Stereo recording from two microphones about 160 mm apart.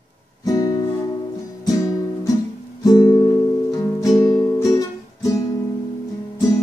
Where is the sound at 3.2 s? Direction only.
20° left (ahead or behind).